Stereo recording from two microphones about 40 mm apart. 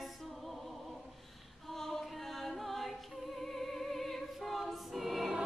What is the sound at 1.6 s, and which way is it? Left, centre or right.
A capella, centre.